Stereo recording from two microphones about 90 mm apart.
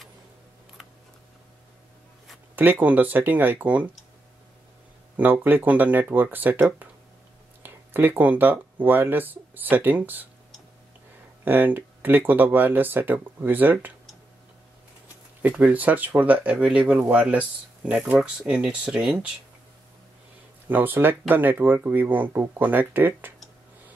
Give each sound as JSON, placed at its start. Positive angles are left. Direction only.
{"t": 2.5, "sound": "speech", "side_deg": -20}
{"t": 5.1, "sound": "speech", "side_deg": -20}
{"t": 7.6, "sound": "speech", "side_deg": -20}
{"t": 11.4, "sound": "speech", "side_deg": -20}
{"t": 15.4, "sound": "speech", "side_deg": -20}
{"t": 20.6, "sound": "speech", "side_deg": -20}